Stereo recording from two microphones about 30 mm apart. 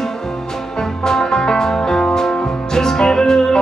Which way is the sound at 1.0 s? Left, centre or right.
Centre.